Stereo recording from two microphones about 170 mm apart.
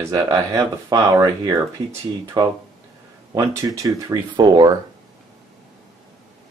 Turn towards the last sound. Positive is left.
turn(degrees=-25)  # may be behind; listen again after turning